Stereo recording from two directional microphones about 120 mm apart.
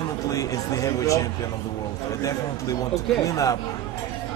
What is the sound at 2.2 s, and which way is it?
A man's voice, 30° left (ahead or behind).